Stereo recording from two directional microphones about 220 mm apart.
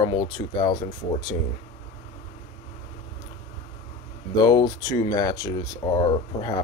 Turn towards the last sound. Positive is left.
turn(degrees=20)  # may be behind; listen again after turning